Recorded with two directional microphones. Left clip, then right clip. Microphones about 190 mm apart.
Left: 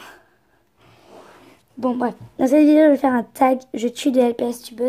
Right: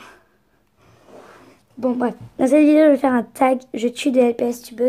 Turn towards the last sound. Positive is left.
turn(degrees=5)  # may be behind; listen again after turning